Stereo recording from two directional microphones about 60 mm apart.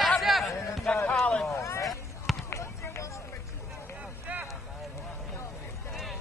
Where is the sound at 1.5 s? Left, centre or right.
Left.